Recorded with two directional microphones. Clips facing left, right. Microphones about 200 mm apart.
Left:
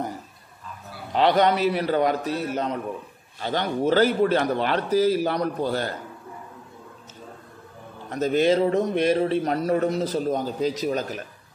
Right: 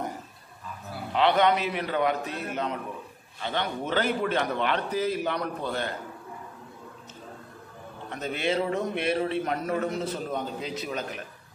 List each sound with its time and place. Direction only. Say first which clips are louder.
1.1 s a man's voice: left 3 dB; 40° left (ahead or behind)
8.1 s a man's voice: left 9 dB; 40° left (ahead or behind)